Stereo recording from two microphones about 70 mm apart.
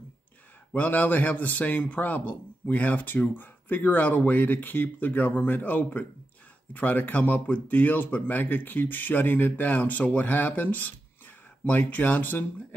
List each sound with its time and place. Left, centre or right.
0.7 s a man's voice: left